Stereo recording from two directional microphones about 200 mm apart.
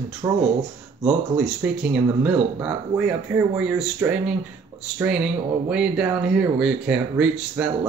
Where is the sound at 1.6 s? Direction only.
10° right (ahead or behind).